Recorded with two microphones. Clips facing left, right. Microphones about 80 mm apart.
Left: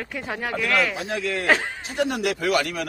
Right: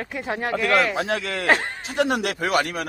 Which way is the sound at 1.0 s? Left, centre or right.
Right.